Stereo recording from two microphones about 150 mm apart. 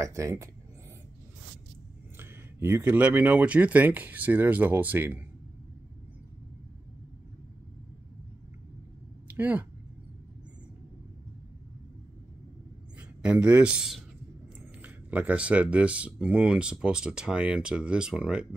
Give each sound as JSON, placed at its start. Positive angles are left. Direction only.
{"t": 0.0, "sound": "speech", "side_deg": -20}
{"t": 2.1, "sound": "speech", "side_deg": -15}
{"t": 9.3, "sound": "a woman's voice", "side_deg": -10}
{"t": 13.2, "sound": "speech", "side_deg": -10}